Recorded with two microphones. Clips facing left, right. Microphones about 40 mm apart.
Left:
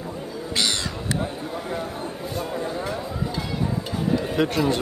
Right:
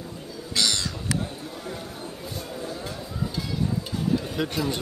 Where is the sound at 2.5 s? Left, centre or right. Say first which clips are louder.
Left 5 dB; left.